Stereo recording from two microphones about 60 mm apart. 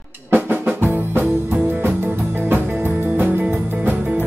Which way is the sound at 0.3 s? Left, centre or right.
Right.